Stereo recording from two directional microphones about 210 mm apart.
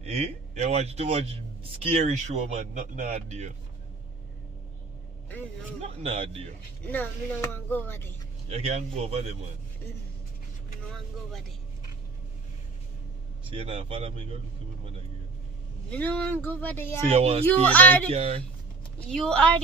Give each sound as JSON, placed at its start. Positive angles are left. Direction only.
{"t": 0.0, "sound": "a man's voice", "side_deg": -30}
{"t": 5.8, "sound": "a man's voice", "side_deg": -30}
{"t": 6.9, "sound": "speech", "side_deg": 10}
{"t": 8.5, "sound": "a man's voice", "side_deg": -30}
{"t": 13.5, "sound": "a man's voice", "side_deg": -25}
{"t": 15.9, "sound": "speech", "side_deg": 5}
{"t": 17.1, "sound": "a man's voice", "side_deg": -30}
{"t": 17.6, "sound": "speech", "side_deg": 10}
{"t": 18.1, "sound": "a man's voice", "side_deg": -30}
{"t": 19.0, "sound": "a woman's voice", "side_deg": 5}